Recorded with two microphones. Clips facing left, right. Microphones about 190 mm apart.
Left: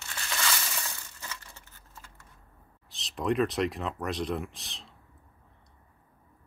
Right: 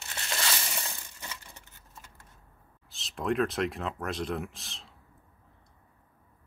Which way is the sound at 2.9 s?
Centre (ahead or behind).